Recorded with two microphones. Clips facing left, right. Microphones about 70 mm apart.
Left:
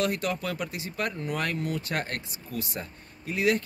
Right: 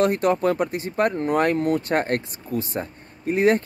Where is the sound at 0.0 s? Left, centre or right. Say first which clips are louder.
Right 9 dB; right.